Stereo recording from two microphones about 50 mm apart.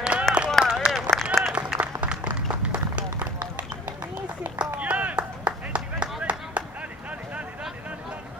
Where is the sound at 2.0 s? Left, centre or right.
Right.